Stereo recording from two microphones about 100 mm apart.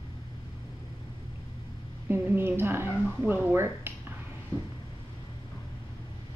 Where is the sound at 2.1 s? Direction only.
20° right (ahead or behind).